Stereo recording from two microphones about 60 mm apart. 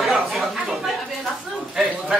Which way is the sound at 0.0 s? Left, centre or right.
Centre.